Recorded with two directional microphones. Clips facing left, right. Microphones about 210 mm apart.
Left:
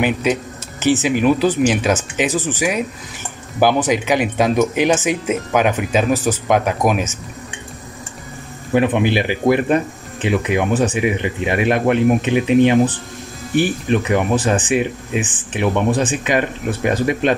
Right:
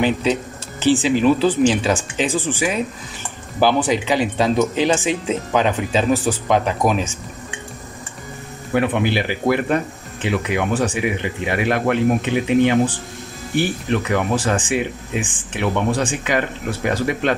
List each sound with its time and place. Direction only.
0.0 s speech: 15° left (ahead or behind)
8.7 s speech: 20° left (ahead or behind)